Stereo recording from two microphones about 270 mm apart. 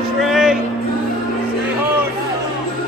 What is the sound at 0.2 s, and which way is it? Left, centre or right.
Music, centre.